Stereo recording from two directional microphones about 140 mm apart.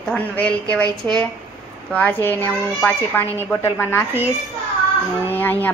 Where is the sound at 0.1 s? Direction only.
10° left (ahead or behind).